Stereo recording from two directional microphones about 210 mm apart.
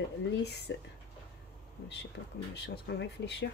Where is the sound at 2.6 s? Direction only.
55° left (ahead or behind).